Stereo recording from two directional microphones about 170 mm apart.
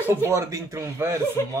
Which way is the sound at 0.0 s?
15° right (ahead or behind).